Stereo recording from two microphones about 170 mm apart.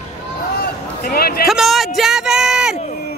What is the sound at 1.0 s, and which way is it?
Speech, 60° left (ahead or behind).